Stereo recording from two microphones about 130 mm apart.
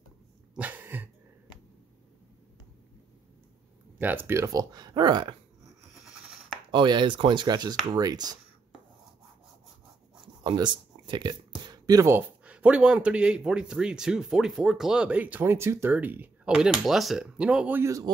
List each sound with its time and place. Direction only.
0.6 s dog: 15° right (ahead or behind)
4.0 s speech: 15° right (ahead or behind); by 5.3 s 35° right (ahead or behind)
6.0 s a sound: centre (ahead or behind)
6.7 s speech: 35° right (ahead or behind)
10.4 s speech: 35° right (ahead or behind)